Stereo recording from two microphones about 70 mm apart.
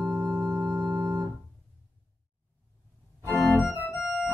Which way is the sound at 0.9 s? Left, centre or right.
Right.